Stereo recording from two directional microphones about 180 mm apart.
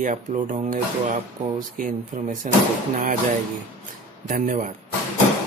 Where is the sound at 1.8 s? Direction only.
45° right (ahead or behind).